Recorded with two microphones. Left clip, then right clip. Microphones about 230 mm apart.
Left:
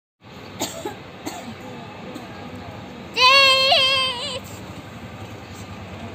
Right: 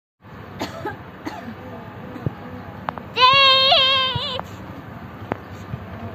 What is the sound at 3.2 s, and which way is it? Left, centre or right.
Child singing, centre.